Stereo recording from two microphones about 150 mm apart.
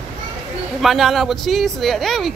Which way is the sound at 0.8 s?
Centre (ahead or behind).